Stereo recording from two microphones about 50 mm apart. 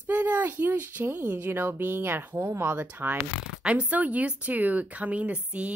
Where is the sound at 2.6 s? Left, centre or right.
Right.